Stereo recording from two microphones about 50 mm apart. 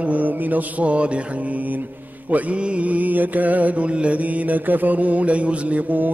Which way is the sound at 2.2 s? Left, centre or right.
Right.